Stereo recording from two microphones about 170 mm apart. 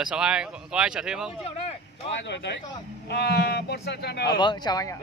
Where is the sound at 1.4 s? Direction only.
35° left (ahead or behind).